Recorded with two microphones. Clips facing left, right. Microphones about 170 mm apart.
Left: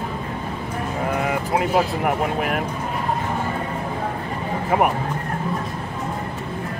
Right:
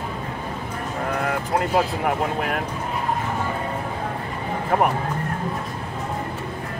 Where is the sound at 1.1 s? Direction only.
5° left (ahead or behind).